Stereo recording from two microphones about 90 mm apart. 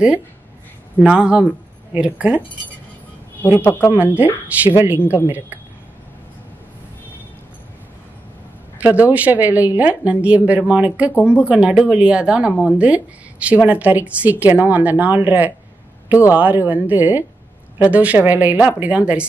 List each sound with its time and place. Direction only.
1.0 s a woman's voice: 10° right (ahead or behind)
3.5 s speech: 25° left (ahead or behind)
3.9 s a woman's voice: 20° right (ahead or behind)
8.7 s a woman's voice: 15° right (ahead or behind)